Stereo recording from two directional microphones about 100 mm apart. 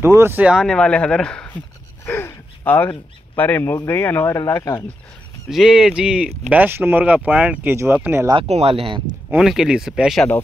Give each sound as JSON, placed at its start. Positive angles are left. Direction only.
{"t": 0.0, "sound": "speech", "side_deg": -25}
{"t": 0.7, "sound": "speech", "side_deg": 10}
{"t": 2.0, "sound": "gasp", "side_deg": 20}
{"t": 3.3, "sound": "speech", "side_deg": 20}
{"t": 5.5, "sound": "speech", "side_deg": -5}
{"t": 7.7, "sound": "speech", "side_deg": -25}
{"t": 8.4, "sound": "speech", "side_deg": -85}
{"t": 9.4, "sound": "speech", "side_deg": -5}